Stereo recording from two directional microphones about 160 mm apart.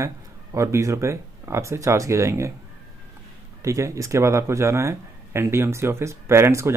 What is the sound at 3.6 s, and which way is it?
Speech, 20° right (ahead or behind).